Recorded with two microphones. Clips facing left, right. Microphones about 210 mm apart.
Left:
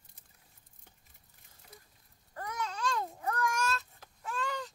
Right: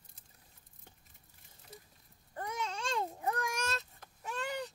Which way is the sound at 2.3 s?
25° right (ahead or behind).